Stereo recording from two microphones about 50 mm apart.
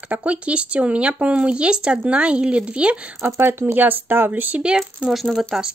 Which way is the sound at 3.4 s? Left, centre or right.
Right.